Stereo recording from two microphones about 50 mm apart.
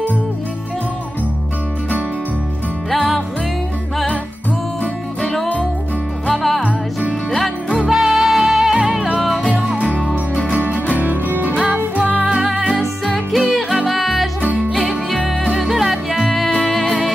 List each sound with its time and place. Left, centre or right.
6.3 s music: centre
9.2 s music: centre
9.5 s music: centre
10.6 s music: right
11.5 s music: centre
12.7 s music: centre